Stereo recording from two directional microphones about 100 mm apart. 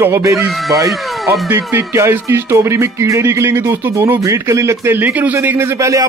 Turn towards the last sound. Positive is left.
turn(degrees=-30)  # may be behind; listen again after turning